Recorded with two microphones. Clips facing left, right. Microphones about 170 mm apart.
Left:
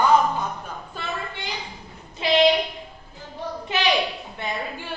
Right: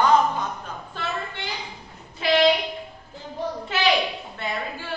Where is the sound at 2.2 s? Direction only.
20° left (ahead or behind).